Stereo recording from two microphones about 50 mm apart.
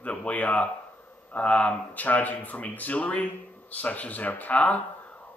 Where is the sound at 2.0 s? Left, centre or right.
Left.